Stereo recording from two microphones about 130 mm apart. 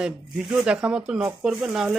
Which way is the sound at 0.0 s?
Centre (ahead or behind).